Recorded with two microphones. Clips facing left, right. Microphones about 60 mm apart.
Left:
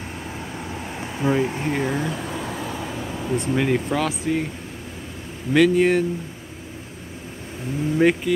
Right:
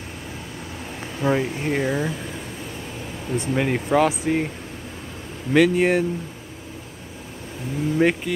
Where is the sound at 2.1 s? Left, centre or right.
Left.